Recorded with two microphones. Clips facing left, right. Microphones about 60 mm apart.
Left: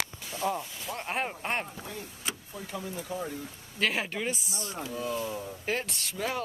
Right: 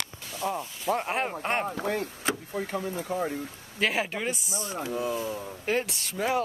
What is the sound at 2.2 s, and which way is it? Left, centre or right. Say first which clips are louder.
Speech: right 8 dB; right.